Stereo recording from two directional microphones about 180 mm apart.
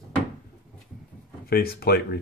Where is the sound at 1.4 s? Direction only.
55° left (ahead or behind).